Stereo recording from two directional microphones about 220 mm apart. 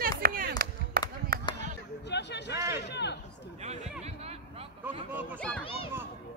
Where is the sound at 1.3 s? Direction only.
45° right (ahead or behind).